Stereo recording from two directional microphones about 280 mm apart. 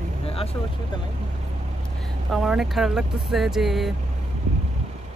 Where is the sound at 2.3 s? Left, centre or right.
Centre.